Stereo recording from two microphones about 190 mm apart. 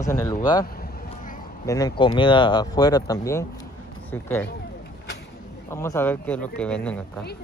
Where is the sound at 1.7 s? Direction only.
20° left (ahead or behind).